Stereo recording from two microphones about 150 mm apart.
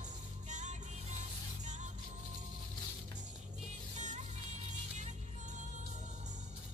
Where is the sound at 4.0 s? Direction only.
55° right (ahead or behind).